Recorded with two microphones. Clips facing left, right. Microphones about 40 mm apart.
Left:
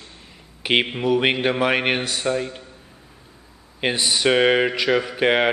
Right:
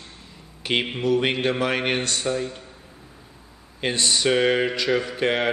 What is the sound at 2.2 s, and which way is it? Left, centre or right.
Speech, left.